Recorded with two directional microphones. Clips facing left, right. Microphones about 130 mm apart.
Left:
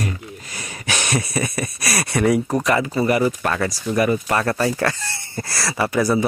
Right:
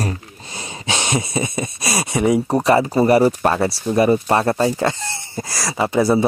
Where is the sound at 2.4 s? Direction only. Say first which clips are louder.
Right 4 dB; 30° right (ahead or behind).